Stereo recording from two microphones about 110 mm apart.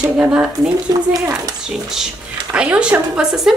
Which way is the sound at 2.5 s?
10° right (ahead or behind).